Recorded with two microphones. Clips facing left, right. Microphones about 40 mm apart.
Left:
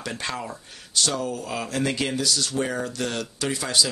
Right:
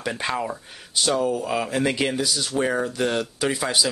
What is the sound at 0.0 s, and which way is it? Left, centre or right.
Speech, centre.